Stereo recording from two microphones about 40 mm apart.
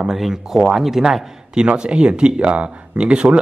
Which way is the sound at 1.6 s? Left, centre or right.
Right.